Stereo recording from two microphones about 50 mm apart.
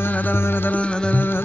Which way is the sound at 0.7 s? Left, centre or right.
Left.